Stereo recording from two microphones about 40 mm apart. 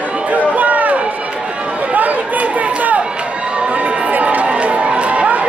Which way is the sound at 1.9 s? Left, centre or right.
Right.